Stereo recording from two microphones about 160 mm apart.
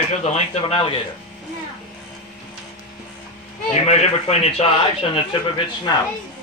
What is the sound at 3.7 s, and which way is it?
Speech, 40° left (ahead or behind).